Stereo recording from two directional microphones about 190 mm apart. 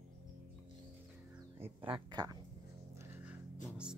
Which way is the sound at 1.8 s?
25° right (ahead or behind).